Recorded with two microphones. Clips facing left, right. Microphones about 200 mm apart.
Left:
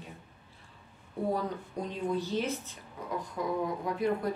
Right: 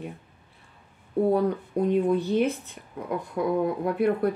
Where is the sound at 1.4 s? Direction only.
60° right (ahead or behind).